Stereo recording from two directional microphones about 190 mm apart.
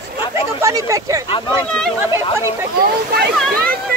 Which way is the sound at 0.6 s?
15° right (ahead or behind).